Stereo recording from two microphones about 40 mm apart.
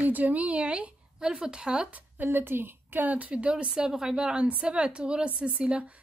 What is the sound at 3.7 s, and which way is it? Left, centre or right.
A woman's voice, centre.